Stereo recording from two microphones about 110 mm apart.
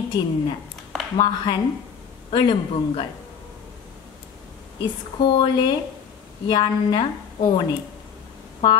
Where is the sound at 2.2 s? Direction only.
55° left (ahead or behind).